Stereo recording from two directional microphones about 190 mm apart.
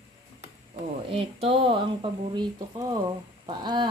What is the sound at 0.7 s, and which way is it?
Speech, 30° right (ahead or behind).